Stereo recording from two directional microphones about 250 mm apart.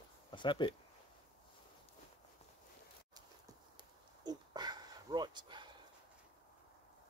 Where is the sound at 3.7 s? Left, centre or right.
Centre.